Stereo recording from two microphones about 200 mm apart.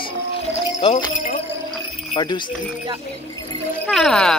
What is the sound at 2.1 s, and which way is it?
Speech, 20° left (ahead or behind).